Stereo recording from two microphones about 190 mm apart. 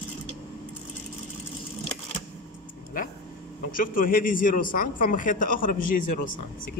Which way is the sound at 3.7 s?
45° left (ahead or behind).